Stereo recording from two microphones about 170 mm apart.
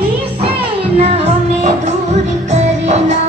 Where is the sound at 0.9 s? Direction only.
35° right (ahead or behind).